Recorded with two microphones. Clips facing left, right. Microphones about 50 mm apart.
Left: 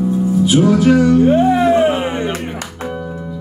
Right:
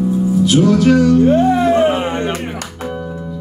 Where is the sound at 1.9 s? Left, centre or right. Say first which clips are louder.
Even; right.